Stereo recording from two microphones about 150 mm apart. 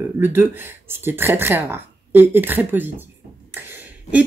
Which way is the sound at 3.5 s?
15° right (ahead or behind).